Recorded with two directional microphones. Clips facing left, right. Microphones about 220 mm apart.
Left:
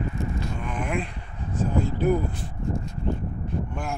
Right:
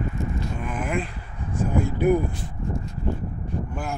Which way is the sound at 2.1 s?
10° right (ahead or behind).